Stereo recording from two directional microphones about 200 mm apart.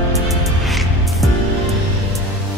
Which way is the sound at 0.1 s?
Centre (ahead or behind).